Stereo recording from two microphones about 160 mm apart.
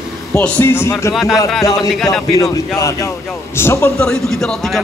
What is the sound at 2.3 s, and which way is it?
Music, 20° left (ahead or behind).